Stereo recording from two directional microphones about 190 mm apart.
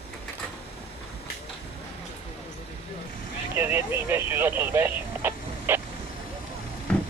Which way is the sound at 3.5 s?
10° right (ahead or behind).